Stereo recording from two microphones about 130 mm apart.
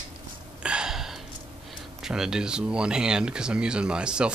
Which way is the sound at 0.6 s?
5° right (ahead or behind).